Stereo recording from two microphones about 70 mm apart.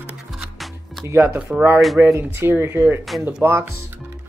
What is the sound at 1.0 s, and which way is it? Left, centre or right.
Speech, right.